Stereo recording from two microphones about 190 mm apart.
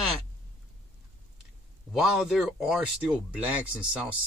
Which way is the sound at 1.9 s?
Centre (ahead or behind).